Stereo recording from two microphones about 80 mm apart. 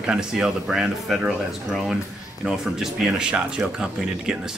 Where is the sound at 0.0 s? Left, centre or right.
Centre.